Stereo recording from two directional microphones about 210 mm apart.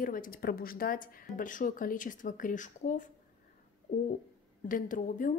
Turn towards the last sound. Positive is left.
turn(degrees=40)  # may be behind; listen again after turning